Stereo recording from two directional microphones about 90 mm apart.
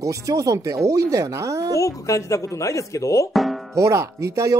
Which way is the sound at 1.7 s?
35° left (ahead or behind).